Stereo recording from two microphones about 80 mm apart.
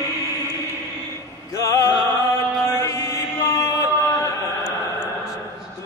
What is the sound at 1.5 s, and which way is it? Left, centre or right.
Opera, left.